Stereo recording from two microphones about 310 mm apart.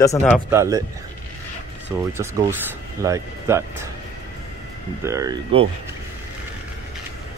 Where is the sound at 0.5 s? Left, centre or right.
Centre.